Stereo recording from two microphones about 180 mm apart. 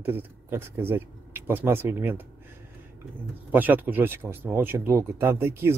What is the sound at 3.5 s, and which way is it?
Speech, 10° right (ahead or behind).